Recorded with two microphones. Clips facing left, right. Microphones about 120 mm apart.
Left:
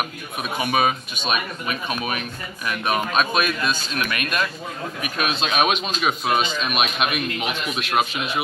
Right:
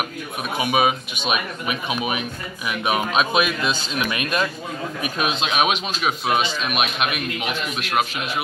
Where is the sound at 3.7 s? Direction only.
20° right (ahead or behind); by 7.0 s 5° right (ahead or behind).